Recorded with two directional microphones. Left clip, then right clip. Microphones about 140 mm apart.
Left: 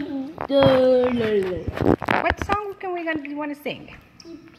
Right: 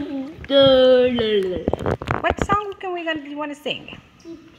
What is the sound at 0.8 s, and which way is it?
Speech, 40° left (ahead or behind).